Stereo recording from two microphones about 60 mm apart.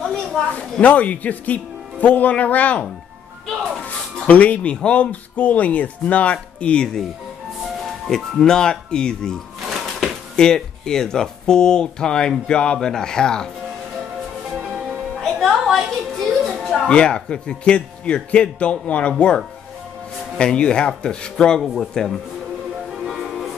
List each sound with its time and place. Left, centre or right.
0.0 s a sound: centre
0.6 s speech: left
3.8 s speech: left
8.1 s speech: centre
9.7 s music: centre
10.3 s speech: centre
15.2 s music: centre
16.9 s speech: centre
21.5 s a man's voice: centre
23.0 s music: centre